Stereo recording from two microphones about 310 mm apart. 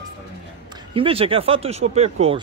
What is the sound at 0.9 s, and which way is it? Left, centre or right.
Speech, centre.